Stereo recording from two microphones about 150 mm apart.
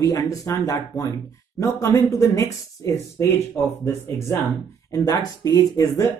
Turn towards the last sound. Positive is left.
turn(degrees=25)  # may be behind; listen again after turning